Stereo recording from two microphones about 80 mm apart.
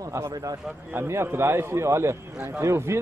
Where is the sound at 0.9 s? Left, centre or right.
Right.